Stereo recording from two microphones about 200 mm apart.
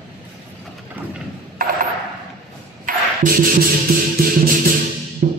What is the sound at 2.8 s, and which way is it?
Music, 45° right (ahead or behind).